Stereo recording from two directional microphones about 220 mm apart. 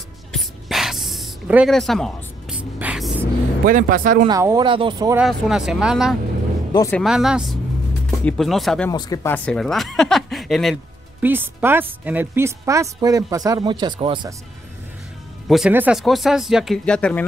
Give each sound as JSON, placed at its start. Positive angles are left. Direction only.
{"t": 0.3, "sound": "spray", "side_deg": 0}
{"t": 3.6, "sound": "speech", "side_deg": -40}
{"t": 4.3, "sound": "speech", "side_deg": -15}
{"t": 5.2, "sound": "speech", "side_deg": 0}
{"t": 6.7, "sound": "speech", "side_deg": 15}
{"t": 7.0, "sound": "speech", "side_deg": 0}
{"t": 8.9, "sound": "speech", "side_deg": 15}
{"t": 15.4, "sound": "speech", "side_deg": 0}